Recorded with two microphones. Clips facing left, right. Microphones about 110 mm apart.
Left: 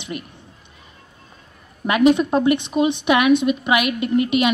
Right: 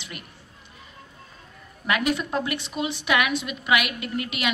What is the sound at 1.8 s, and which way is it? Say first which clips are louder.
A woman's voice: left 9 dB; 25° left (ahead or behind).